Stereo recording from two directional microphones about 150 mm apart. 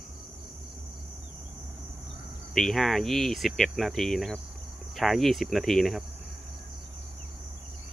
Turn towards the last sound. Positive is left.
turn(degrees=0)  # may be behind; listen again after turning